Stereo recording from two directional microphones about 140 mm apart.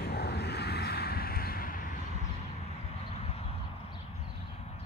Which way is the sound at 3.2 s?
45° left (ahead or behind).